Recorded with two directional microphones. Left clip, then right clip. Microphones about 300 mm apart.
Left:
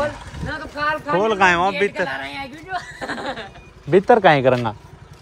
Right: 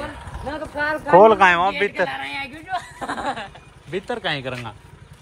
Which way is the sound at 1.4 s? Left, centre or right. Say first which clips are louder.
Even; centre.